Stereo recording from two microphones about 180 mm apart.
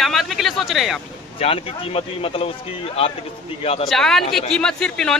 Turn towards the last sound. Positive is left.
turn(degrees=5)  # may be behind; listen again after turning